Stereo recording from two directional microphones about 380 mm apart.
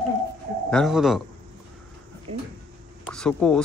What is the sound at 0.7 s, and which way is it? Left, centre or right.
Speech, centre.